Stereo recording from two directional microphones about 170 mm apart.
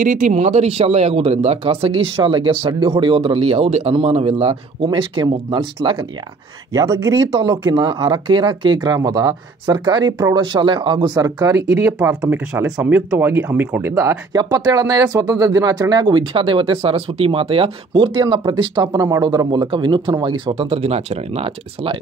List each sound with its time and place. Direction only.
0.0 s speech: 50° right (ahead or behind); by 6.0 s 30° right (ahead or behind)
6.7 s speech: 20° right (ahead or behind)
7.2 s speech: 30° right (ahead or behind)
11.8 s speech: 10° right (ahead or behind); by 21.9 s 35° right (ahead or behind)